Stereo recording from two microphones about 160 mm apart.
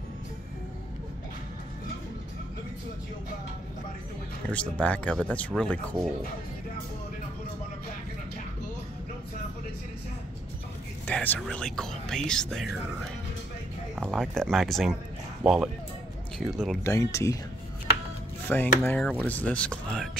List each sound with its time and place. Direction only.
4.5 s speech: 10° left (ahead or behind)
11.1 s speech: 10° left (ahead or behind)
13.9 s speech: centre (ahead or behind)
16.8 s speech: 20° left (ahead or behind)
18.5 s speech: 5° left (ahead or behind)